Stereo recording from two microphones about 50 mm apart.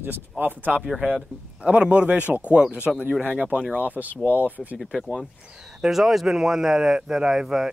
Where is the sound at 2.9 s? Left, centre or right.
Centre.